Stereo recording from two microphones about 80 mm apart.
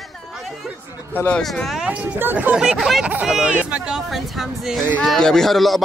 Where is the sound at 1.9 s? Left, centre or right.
Right.